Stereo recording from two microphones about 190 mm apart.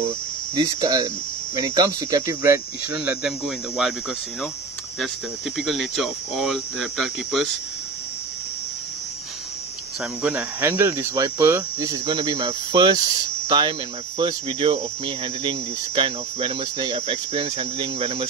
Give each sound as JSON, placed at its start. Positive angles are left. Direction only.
{"t": 0.6, "sound": "speech", "side_deg": -20}
{"t": 5.6, "sound": "speech", "side_deg": 0}
{"t": 10.2, "sound": "speech", "side_deg": -10}
{"t": 11.2, "sound": "cricket", "side_deg": -20}